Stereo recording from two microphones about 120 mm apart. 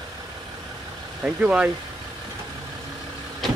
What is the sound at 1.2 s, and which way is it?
Speech, 15° right (ahead or behind).